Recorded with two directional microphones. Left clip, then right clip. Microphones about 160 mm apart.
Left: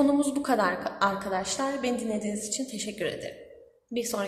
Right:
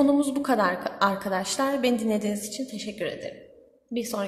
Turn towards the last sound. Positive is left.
turn(degrees=-20)  # may be behind; listen again after turning